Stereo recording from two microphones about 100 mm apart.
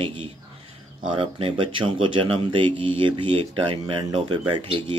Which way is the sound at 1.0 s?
55° right (ahead or behind).